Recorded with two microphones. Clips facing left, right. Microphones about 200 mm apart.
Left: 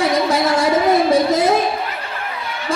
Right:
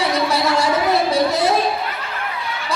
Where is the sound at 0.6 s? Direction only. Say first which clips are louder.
Left 3 dB; 50° left (ahead or behind).